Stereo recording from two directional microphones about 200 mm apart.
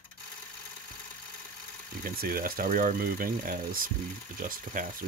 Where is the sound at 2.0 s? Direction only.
50° right (ahead or behind).